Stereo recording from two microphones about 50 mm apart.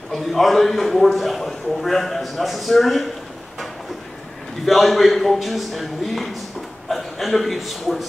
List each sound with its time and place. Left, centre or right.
0.1 s a man's voice: centre
4.6 s a man's voice: centre